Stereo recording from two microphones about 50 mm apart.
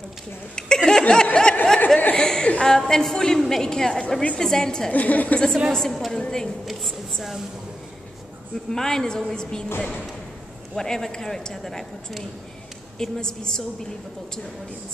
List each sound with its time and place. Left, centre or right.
0.6 s chuckle: centre
2.6 s a woman's voice: centre
4.9 s a woman's voice: left
5.7 s a woman's voice: centre
6.6 s speech: centre
8.6 s a woman's voice: centre
10.8 s a woman's voice: centre